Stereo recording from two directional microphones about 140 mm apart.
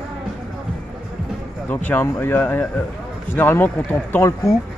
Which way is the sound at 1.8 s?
15° left (ahead or behind).